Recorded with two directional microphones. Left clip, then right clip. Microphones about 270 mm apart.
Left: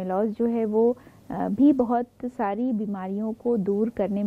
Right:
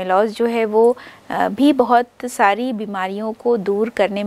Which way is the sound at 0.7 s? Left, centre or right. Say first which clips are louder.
Right 8 dB; right.